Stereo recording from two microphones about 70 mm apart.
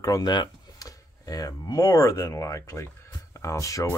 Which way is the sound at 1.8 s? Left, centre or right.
Left.